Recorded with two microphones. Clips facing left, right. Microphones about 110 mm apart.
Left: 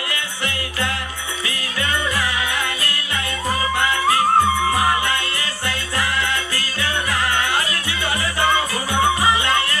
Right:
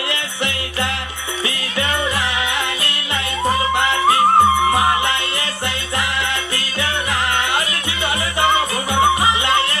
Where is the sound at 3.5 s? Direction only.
20° right (ahead or behind).